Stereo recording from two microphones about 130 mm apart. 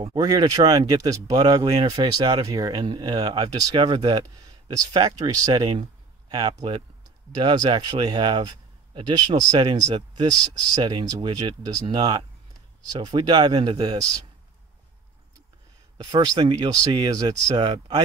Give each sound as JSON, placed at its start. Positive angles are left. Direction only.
{"t": 0.0, "sound": "speech", "side_deg": -30}
{"t": 16.0, "sound": "speech", "side_deg": -30}